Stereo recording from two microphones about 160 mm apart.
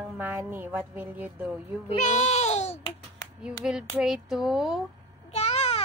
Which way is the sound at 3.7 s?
5° right (ahead or behind).